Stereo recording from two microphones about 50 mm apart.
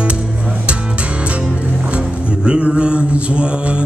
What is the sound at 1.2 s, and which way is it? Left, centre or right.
Music, right.